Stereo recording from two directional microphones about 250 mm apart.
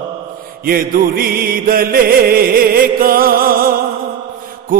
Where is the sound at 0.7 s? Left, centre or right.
Right.